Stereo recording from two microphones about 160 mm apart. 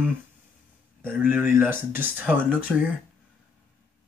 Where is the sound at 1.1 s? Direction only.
10° right (ahead or behind).